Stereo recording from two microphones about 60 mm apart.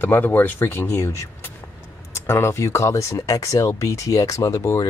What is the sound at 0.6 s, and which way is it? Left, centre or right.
Speech, left.